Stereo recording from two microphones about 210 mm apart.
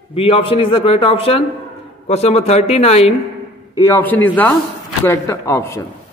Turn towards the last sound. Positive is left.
turn(degrees=15)  # may be behind; listen again after turning